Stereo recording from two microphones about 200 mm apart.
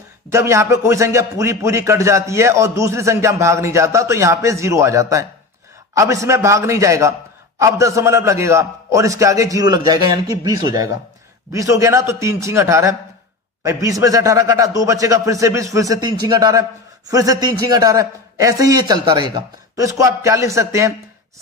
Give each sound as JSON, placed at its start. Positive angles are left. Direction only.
{"t": 0.3, "sound": "a man's voice", "side_deg": -15}